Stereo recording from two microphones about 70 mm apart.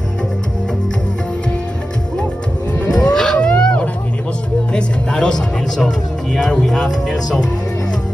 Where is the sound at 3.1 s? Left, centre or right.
Centre.